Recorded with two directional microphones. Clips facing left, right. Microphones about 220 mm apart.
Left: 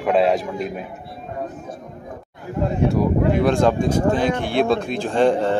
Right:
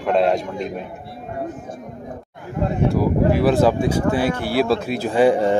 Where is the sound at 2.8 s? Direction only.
Centre (ahead or behind).